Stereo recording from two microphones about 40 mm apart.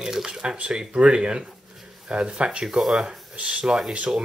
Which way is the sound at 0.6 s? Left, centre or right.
Right.